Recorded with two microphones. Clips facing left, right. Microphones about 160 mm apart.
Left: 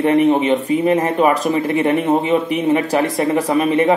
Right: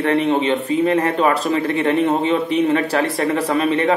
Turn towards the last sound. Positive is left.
turn(degrees=15)  # may be behind; listen again after turning